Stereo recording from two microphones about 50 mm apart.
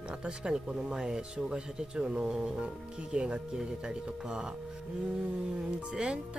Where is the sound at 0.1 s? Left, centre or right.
Centre.